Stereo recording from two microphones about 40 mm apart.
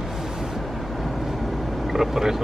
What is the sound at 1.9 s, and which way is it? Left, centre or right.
Vehicle, centre.